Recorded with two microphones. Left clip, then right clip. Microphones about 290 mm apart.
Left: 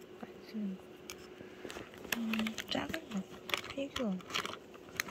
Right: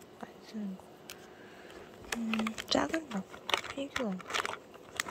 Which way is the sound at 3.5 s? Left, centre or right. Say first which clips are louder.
Right 4 dB; centre.